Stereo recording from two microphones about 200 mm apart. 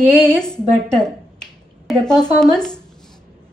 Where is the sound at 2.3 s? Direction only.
5° left (ahead or behind).